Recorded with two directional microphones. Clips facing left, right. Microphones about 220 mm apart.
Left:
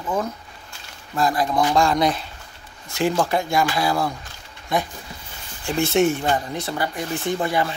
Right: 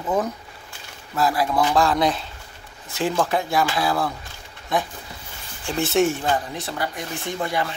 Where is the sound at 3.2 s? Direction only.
Centre (ahead or behind).